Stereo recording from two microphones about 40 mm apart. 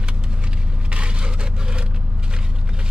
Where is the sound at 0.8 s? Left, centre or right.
Right.